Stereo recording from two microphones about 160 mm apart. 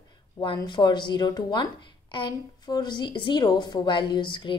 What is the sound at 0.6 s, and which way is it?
A woman's voice, 25° left (ahead or behind).